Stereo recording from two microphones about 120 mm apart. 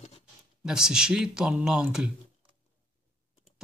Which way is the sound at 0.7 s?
5° right (ahead or behind).